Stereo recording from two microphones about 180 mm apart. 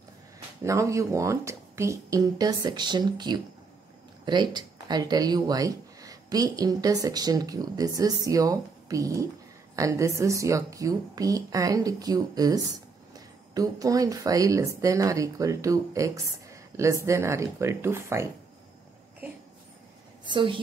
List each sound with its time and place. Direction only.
0.7 s speech: 15° right (ahead or behind)
20.2 s speech: 25° right (ahead or behind)